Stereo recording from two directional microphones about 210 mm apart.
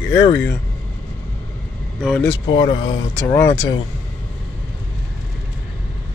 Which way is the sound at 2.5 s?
25° left (ahead or behind).